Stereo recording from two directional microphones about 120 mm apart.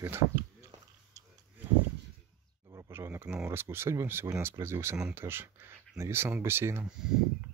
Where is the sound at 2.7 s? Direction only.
25° right (ahead or behind).